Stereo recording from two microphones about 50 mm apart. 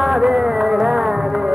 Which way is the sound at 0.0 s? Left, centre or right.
Centre.